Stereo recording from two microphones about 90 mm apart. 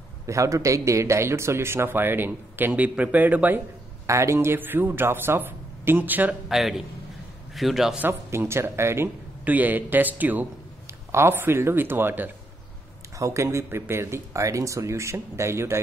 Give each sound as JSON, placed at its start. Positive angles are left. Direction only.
{"t": 0.3, "sound": "speech", "side_deg": -35}
{"t": 4.1, "sound": "speech", "side_deg": -35}
{"t": 6.5, "sound": "a man's voice", "side_deg": 0}
{"t": 8.0, "sound": "speech", "side_deg": -25}